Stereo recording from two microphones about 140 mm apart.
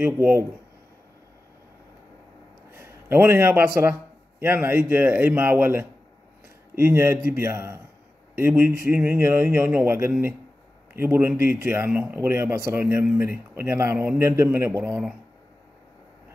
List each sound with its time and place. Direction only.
0.0 s a man's voice: 15° right (ahead or behind)
2.7 s a man's voice: 15° right (ahead or behind)